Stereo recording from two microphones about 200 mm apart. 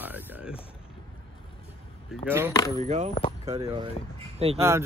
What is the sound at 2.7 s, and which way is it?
Speech, 35° right (ahead or behind).